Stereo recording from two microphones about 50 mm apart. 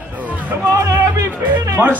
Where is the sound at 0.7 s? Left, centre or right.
Right.